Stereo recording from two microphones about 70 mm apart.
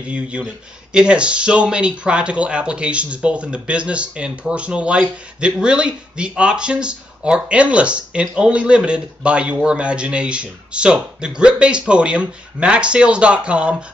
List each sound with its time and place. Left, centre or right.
0.1 s speech: centre